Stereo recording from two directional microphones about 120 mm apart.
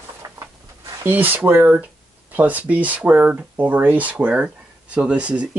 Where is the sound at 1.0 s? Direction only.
15° right (ahead or behind).